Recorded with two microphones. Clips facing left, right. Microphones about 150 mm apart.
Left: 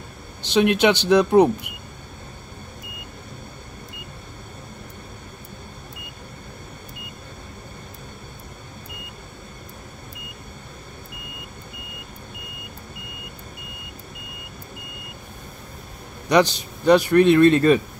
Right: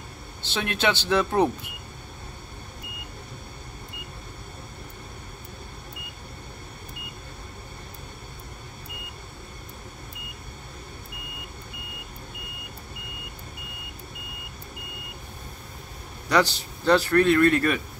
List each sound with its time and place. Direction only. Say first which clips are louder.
0.4 s speech: left 10 dB; 15° left (ahead or behind)
16.3 s speech: left 5 dB; 20° left (ahead or behind)